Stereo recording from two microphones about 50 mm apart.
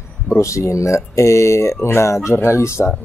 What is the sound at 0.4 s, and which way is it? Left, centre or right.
Speech, left.